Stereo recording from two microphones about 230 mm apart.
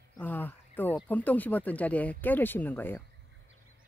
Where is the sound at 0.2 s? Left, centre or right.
Centre.